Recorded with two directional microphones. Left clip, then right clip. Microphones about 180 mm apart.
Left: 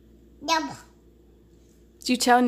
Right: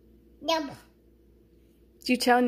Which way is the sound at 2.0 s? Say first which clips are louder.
Left 3 dB; 5° left (ahead or behind).